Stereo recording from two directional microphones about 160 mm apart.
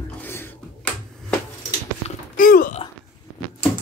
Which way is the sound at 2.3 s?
60° left (ahead or behind).